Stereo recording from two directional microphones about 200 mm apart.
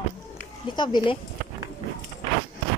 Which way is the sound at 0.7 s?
20° left (ahead or behind).